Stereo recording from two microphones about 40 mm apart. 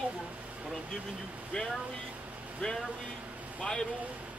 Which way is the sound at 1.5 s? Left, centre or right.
Left.